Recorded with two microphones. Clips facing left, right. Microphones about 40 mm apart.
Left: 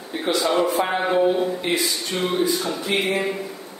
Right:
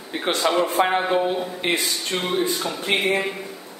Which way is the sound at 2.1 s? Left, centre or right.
Centre.